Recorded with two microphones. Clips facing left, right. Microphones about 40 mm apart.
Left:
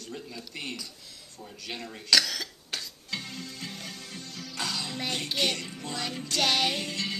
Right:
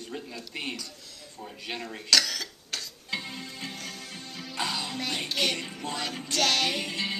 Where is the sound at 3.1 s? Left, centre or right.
Centre.